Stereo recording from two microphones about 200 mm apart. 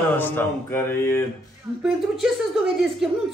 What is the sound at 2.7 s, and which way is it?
Speech, centre (ahead or behind).